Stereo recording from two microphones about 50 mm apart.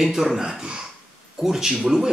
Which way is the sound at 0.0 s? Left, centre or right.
Centre.